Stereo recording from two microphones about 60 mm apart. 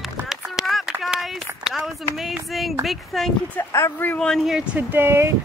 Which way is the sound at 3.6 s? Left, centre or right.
Left.